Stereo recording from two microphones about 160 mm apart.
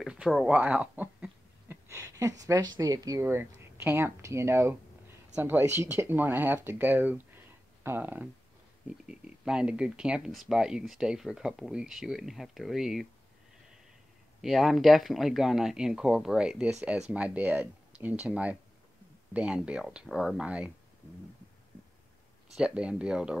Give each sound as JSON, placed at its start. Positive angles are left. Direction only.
{"t": 0.0, "sound": "speech", "side_deg": -5}
{"t": 14.4, "sound": "speech", "side_deg": 0}
{"t": 22.6, "sound": "speech", "side_deg": -5}